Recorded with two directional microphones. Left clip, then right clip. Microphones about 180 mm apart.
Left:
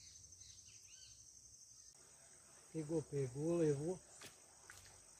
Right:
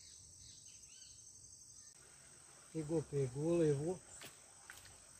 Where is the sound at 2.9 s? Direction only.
20° left (ahead or behind).